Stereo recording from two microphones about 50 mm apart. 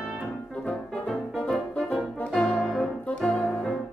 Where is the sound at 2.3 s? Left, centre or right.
Centre.